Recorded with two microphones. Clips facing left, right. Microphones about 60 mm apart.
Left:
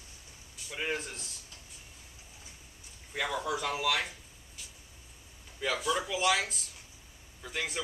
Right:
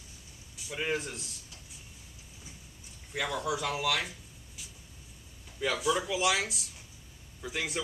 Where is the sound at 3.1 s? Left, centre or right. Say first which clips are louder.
Right 1 dB; centre.